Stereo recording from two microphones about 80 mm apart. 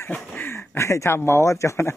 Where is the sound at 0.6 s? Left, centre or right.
Left.